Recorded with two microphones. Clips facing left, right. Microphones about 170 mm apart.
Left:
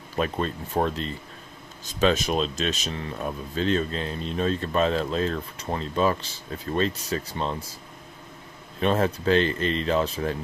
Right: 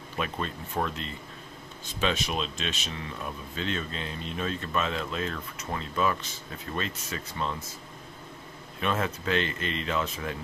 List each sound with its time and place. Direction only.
0.2 s speech: 40° left (ahead or behind)
8.8 s speech: 35° left (ahead or behind)